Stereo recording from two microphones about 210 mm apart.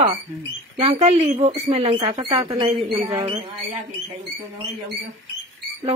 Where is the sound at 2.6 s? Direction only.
30° right (ahead or behind).